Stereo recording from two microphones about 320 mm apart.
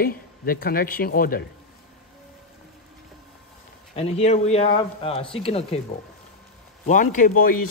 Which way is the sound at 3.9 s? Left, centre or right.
Centre.